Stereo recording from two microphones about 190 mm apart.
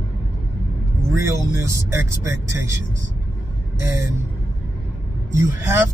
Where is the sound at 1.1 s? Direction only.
15° right (ahead or behind).